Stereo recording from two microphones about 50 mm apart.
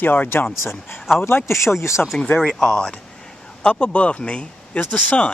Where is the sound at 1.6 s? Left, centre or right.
Left.